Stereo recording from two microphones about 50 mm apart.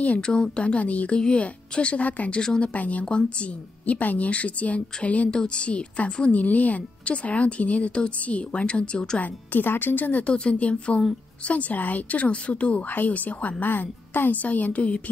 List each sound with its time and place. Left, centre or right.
0.2 s speech: centre
2.4 s a woman's voice: centre
2.7 s speech: left
3.8 s speech: left
6.3 s speech: left
9.2 s a woman's voice: left
10.2 s speech: left
12.9 s a woman's voice: left